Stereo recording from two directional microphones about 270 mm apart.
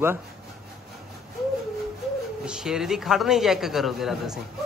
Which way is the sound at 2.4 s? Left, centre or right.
Centre.